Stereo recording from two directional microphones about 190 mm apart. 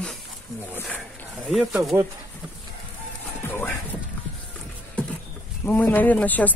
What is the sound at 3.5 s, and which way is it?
Speech, 10° left (ahead or behind).